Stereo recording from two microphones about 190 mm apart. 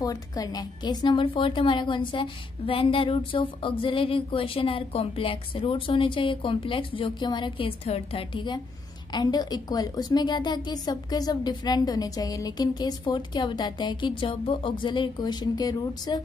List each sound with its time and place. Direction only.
0.0 s a woman's voice: 20° left (ahead or behind)